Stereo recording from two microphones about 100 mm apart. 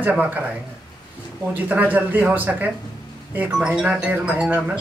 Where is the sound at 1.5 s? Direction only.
15° right (ahead or behind).